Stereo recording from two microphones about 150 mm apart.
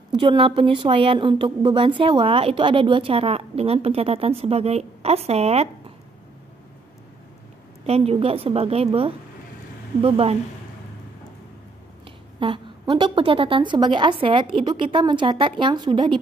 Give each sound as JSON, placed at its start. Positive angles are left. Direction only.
{"t": 0.1, "sound": "a woman's voice", "side_deg": -30}
{"t": 7.8, "sound": "a woman's voice", "side_deg": -45}
{"t": 12.4, "sound": "a woman's voice", "side_deg": -35}